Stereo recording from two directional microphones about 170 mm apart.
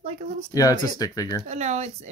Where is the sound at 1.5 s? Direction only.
40° right (ahead or behind).